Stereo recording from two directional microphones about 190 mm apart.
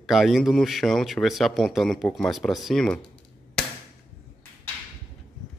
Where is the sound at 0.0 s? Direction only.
Centre (ahead or behind).